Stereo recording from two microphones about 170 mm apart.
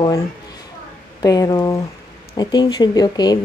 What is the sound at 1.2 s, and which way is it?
Speech, 20° left (ahead or behind).